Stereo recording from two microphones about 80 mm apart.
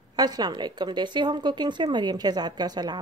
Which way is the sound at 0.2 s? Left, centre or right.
Right.